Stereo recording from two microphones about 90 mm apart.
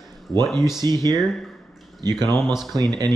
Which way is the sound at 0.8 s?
50° right (ahead or behind).